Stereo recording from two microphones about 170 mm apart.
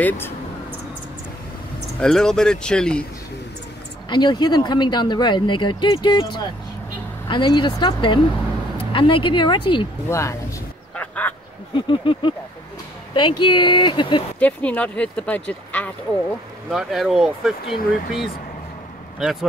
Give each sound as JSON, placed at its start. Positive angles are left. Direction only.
{"t": 2.0, "sound": "speech", "side_deg": 5}
{"t": 4.1, "sound": "speech", "side_deg": 25}
{"t": 10.0, "sound": "speech", "side_deg": 15}
{"t": 11.0, "sound": "duck", "side_deg": 10}
{"t": 11.9, "sound": "a sound", "side_deg": 30}
{"t": 13.1, "sound": "speech", "side_deg": 30}
{"t": 14.4, "sound": "speech", "side_deg": 10}
{"t": 16.7, "sound": "speech", "side_deg": 0}